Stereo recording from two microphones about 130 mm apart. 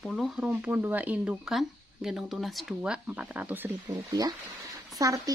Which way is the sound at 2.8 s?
10° right (ahead or behind).